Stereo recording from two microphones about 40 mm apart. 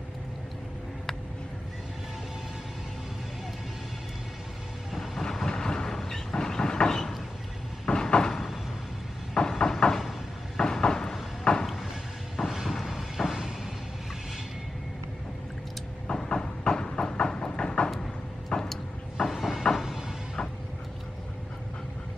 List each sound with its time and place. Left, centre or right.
5.2 s train: centre
7.8 s cupboard open or close: centre
8.3 s a sound: centre
11.6 s a sound: centre
13.2 s music: centre
16.1 s train: centre
18.7 s vehicle: centre
19.3 s a sound: centre
19.7 s music: centre